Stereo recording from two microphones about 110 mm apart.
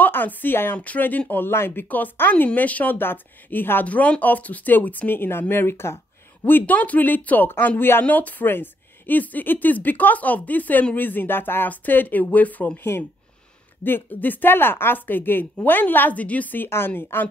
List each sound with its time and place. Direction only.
0.0 s speech: 15° left (ahead or behind)